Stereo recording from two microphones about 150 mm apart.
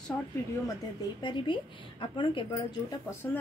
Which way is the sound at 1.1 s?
30° left (ahead or behind).